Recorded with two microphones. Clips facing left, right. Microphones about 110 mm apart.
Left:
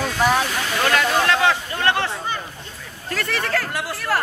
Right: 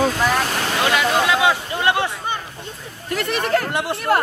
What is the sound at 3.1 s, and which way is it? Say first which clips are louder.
Speech: right 4 dB; 20° right (ahead or behind).